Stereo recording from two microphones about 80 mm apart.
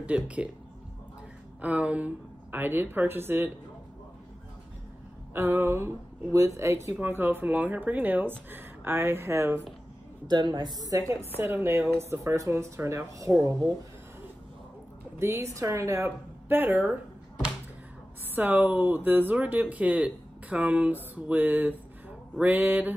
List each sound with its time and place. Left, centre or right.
0.0 s speech: centre
1.6 s speech: centre
5.3 s speech: right
10.2 s a woman's voice: right
10.9 s speech: right
11.3 s speech: right
15.1 s speech: right
16.4 s speech: right
18.3 s speech: right